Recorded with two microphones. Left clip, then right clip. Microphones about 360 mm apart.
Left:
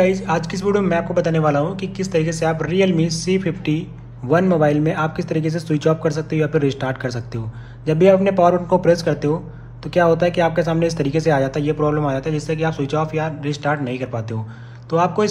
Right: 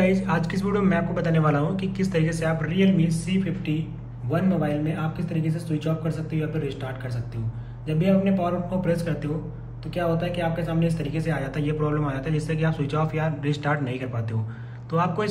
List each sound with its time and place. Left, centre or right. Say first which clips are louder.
0.0 s speech: left 6 dB; centre